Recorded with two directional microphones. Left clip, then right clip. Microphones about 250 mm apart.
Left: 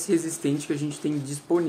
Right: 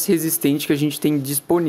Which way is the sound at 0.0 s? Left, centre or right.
Right.